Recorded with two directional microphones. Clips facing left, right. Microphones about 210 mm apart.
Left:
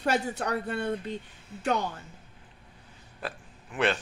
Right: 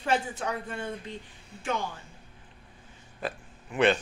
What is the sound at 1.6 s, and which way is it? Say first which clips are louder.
Speech: left 3 dB; 40° left (ahead or behind).